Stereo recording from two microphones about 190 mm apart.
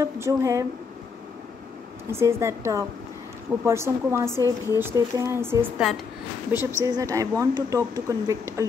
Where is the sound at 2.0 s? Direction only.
15° right (ahead or behind).